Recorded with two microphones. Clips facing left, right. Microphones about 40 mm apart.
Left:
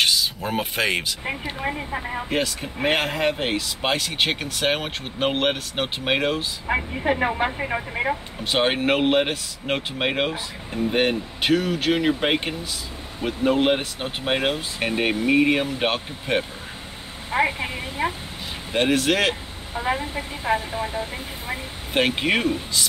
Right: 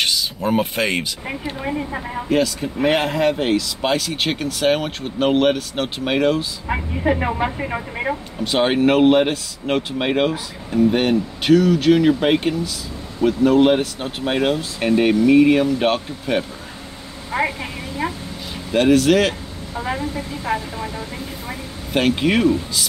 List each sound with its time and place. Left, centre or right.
0.0 s a woman's voice: centre
2.2 s speech: centre
17.4 s vehicle: left
18.7 s speech: centre